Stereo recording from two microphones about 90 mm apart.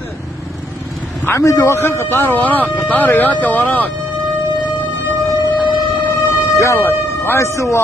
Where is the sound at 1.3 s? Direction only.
35° left (ahead or behind); by 3.9 s 15° left (ahead or behind).